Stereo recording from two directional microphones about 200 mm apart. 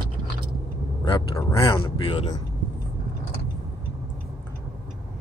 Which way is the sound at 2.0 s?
30° left (ahead or behind).